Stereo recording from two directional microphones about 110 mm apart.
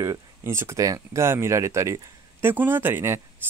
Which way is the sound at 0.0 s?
25° right (ahead or behind).